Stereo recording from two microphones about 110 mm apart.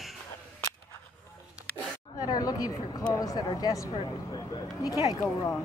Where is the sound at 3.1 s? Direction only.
35° left (ahead or behind).